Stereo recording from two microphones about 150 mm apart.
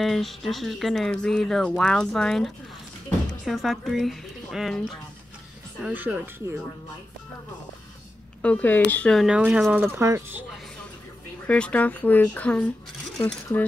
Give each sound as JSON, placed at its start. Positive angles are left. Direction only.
{"t": 0.0, "sound": "speech", "side_deg": 0}
{"t": 5.9, "sound": "speech", "side_deg": -15}
{"t": 8.4, "sound": "speech", "side_deg": 10}
{"t": 9.9, "sound": "speech", "side_deg": -15}
{"t": 11.4, "sound": "speech", "side_deg": 10}